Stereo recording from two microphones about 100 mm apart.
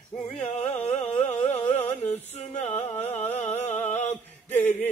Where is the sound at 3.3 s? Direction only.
85° left.